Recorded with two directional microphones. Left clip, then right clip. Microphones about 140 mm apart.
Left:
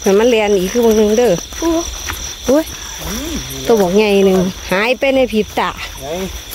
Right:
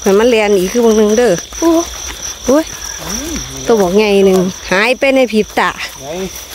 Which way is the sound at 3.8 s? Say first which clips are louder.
Right 2 dB; 15° right (ahead or behind).